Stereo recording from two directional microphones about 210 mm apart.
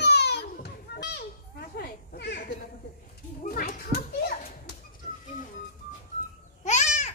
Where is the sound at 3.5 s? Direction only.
45° left (ahead or behind).